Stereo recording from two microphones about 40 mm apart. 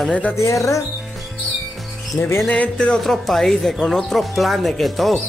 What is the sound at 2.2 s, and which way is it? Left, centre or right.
Speech, left.